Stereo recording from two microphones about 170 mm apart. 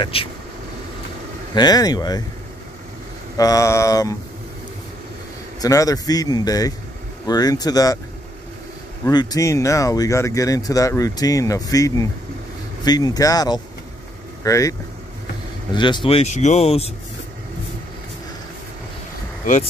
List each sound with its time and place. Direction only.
0.0 s speech: 30° left (ahead or behind)
1.5 s speech: 25° left (ahead or behind)
3.3 s speech: 20° left (ahead or behind)
5.6 s speech: 20° left (ahead or behind)
9.0 s speech: 25° left (ahead or behind)
16.1 s speech: 40° left (ahead or behind)